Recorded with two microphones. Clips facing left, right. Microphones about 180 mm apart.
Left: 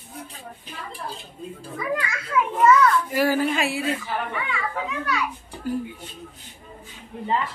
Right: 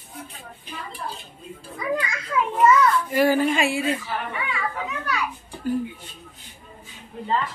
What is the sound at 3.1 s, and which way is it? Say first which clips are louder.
Speech: right 2 dB; 5° left (ahead or behind).